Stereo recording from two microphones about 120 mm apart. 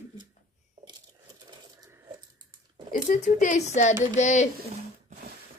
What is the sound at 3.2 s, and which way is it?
A woman's voice, 80° left.